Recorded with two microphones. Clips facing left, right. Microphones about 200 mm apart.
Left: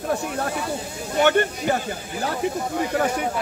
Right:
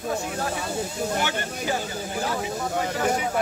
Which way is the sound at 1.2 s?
60° left (ahead or behind).